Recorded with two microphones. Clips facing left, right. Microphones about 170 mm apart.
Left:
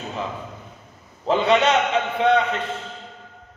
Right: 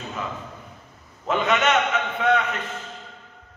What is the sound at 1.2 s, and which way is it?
A man's voice, 30° left (ahead or behind).